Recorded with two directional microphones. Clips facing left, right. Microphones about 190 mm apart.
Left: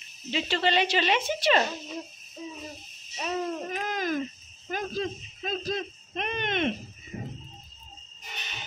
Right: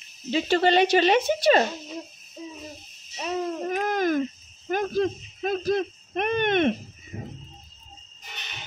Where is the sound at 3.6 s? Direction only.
55° right (ahead or behind).